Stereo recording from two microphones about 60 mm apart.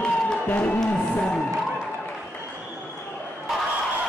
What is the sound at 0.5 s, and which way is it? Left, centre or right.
Speech, left.